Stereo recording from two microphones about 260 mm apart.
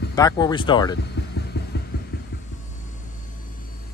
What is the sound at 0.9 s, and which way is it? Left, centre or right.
Hum, left.